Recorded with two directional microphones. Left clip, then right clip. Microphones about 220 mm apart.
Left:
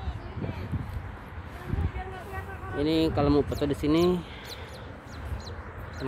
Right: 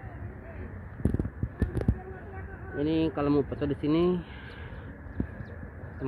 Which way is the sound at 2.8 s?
15° left (ahead or behind).